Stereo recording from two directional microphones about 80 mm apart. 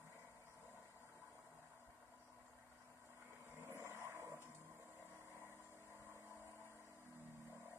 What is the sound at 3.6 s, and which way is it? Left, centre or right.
Vehicle, right.